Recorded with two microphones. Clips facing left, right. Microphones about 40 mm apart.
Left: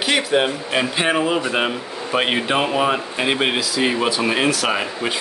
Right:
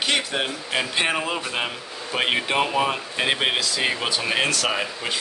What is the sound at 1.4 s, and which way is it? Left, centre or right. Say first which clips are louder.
Speech: left 7 dB; centre.